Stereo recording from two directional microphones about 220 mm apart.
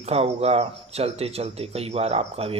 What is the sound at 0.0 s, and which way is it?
Speech, 25° right (ahead or behind).